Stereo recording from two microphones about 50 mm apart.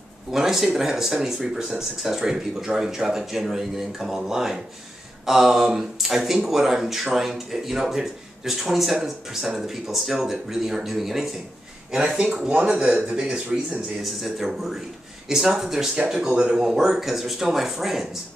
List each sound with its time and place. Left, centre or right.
0.3 s speech: centre
12.2 s speech: right; by 18.0 s centre